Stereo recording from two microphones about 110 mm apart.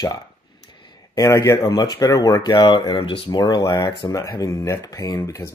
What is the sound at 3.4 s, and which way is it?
A man's voice, 30° left (ahead or behind).